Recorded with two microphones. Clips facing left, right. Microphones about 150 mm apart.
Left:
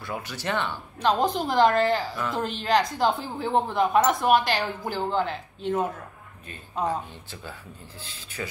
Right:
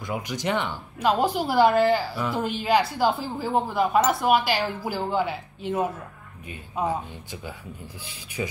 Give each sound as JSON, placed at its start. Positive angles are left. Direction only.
{"t": 0.0, "sound": "a woman's voice", "side_deg": -15}